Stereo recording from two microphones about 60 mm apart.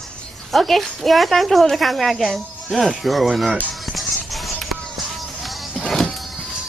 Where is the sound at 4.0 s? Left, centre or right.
Centre.